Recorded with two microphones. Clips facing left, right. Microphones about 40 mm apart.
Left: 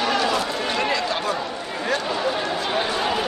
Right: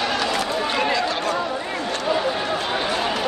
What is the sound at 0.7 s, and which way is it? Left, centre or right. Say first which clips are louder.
Run: right 1 dB; centre.